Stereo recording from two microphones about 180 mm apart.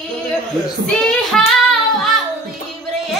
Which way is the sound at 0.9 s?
Centre (ahead or behind).